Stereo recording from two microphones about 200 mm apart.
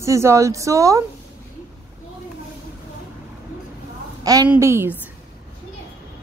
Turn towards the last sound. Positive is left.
turn(degrees=-15)  # may be behind; listen again after turning